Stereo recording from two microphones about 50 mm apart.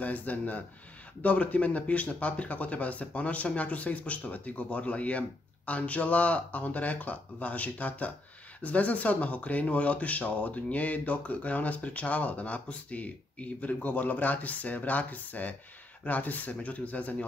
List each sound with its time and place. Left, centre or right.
0.0 s speech: left